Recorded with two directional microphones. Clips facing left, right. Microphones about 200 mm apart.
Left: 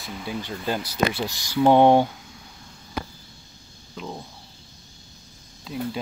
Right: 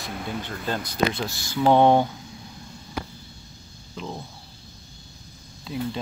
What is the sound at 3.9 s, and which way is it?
Speech, centre (ahead or behind).